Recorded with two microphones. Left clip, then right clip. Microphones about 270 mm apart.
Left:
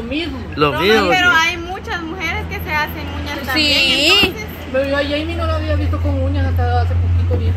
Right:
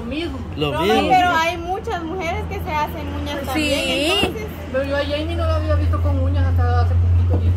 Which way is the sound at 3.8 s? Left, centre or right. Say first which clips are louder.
Left 6 dB; right.